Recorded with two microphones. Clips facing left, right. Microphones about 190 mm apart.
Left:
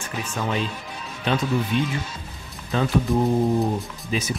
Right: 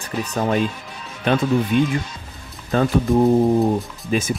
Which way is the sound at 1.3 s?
60° right (ahead or behind).